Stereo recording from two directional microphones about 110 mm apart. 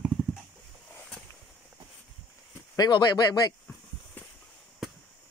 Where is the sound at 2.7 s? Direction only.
40° left (ahead or behind).